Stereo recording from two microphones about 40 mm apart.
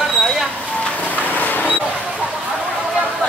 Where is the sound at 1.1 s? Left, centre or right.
Left.